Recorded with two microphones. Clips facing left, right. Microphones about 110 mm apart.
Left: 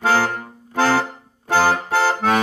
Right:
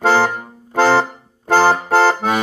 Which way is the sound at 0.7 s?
30° right (ahead or behind).